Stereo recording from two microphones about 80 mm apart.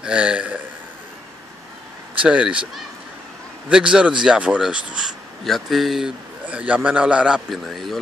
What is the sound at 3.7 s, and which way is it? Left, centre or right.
Speech, centre.